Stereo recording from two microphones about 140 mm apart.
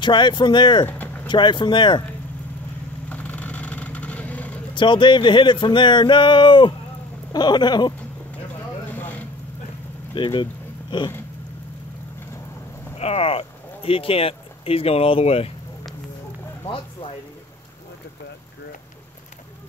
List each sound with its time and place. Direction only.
0.0 s speech: 35° left (ahead or behind)
0.8 s vehicle: 15° left (ahead or behind)
1.2 s speech: 35° left (ahead or behind)
3.1 s vehicle: 10° left (ahead or behind)
4.7 s speech: 35° left (ahead or behind)
8.9 s a sound: 10° left (ahead or behind)
10.1 s a sound: 35° left (ahead or behind)
12.9 s speech: 45° left (ahead or behind)
16.6 s speech: 40° left (ahead or behind)